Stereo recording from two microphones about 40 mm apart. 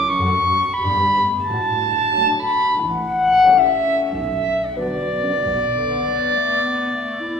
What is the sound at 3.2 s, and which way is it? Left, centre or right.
Music, centre.